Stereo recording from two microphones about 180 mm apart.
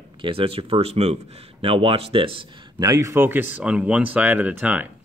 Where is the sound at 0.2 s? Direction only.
30° right (ahead or behind).